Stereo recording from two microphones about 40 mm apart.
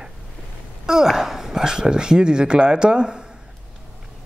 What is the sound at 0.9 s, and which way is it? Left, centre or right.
Speech, centre.